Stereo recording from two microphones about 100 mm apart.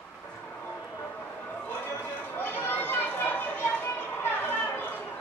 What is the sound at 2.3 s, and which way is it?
Chatter, 20° left (ahead or behind).